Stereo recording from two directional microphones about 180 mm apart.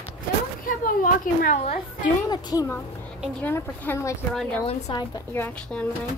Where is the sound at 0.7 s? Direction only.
50° left (ahead or behind).